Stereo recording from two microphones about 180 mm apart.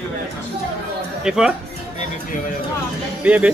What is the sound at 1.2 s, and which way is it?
Speech, 5° right (ahead or behind).